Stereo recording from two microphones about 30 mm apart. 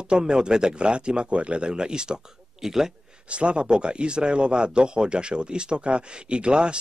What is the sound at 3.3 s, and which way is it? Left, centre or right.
Speech, right.